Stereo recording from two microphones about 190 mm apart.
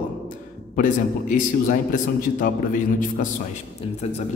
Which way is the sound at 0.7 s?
45° left (ahead or behind).